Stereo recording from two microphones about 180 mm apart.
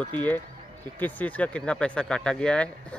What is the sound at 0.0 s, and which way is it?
Speech, 10° left (ahead or behind).